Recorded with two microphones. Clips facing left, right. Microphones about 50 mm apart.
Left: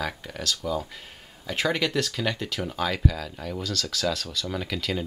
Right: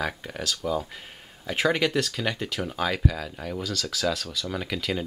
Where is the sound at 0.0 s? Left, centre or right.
Centre.